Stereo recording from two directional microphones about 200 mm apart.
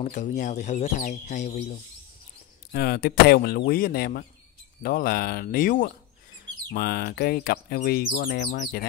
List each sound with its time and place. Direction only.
0.0 s speech: 35° left (ahead or behind)
2.7 s speech: 50° left (ahead or behind)